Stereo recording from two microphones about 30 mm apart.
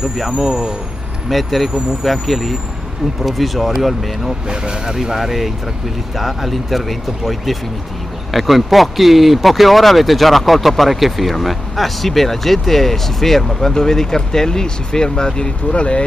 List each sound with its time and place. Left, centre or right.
0.4 s speech: centre
1.3 s speech: centre
4.5 s speech: right
4.9 s speech: centre; by 15.5 s left
15.7 s speech: left